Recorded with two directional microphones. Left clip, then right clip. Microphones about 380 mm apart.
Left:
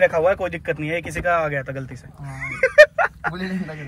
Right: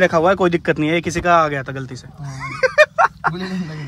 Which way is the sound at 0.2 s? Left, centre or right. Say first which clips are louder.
Right 5 dB; right.